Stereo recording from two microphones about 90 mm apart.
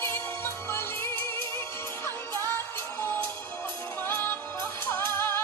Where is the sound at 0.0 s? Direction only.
35° left (ahead or behind).